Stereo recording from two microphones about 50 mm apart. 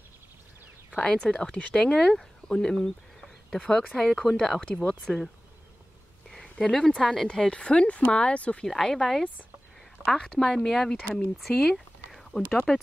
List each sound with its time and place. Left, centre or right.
1.0 s speech: left
6.4 s a sound: centre
7.0 s speech: centre
7.5 s speech: left
8.6 s speech: centre
10.0 s speech: centre
10.4 s speech: centre
11.4 s a sound: centre
12.4 s speech: centre